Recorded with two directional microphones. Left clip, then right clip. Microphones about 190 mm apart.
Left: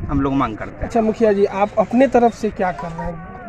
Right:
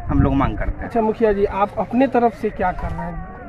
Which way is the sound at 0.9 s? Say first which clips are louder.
Left 2 dB; 50° left (ahead or behind).